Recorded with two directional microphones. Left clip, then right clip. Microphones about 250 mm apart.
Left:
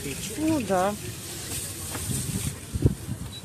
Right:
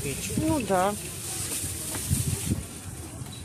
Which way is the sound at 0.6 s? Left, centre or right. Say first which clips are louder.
Right 1 dB; centre.